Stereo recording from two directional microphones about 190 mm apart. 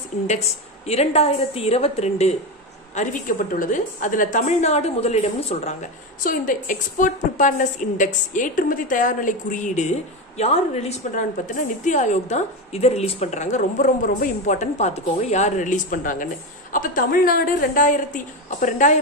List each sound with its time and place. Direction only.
0.3 s a woman's voice: 35° left (ahead or behind)